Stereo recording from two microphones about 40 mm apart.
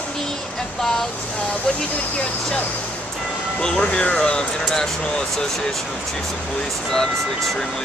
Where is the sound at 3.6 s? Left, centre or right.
Left.